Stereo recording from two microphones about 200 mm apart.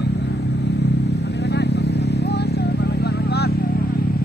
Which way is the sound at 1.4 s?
60° left (ahead or behind).